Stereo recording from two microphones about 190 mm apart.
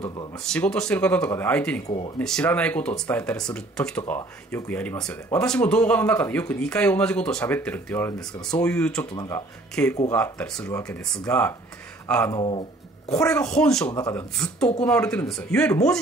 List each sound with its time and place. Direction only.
0.4 s speech: 5° left (ahead or behind)
1.9 s speech: 30° left (ahead or behind)
2.1 s speech: 5° left (ahead or behind)
9.1 s speech: 20° left (ahead or behind)
9.8 s speech: 5° left (ahead or behind)
12.4 s speech: 30° left (ahead or behind)
13.2 s speech: 5° left (ahead or behind)
13.9 s speech: 15° left (ahead or behind)
15.0 s speech: 5° left (ahead or behind)